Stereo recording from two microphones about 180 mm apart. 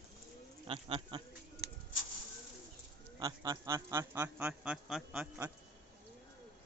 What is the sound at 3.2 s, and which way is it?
A man's voice, 20° right (ahead or behind).